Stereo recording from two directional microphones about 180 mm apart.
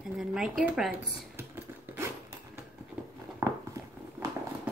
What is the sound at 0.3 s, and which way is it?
Speech, 5° right (ahead or behind).